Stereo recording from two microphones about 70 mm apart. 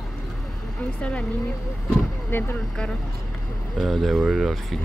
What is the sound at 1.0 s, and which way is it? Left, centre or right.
Speech, centre.